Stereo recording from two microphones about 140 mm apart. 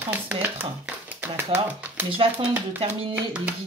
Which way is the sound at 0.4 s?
15° right (ahead or behind).